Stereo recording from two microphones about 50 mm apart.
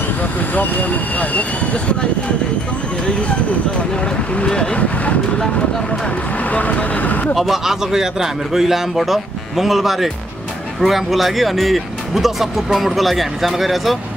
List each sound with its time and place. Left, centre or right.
0.4 s speech: left
4.0 s speech: centre
6.5 s speech: left
7.3 s speech: centre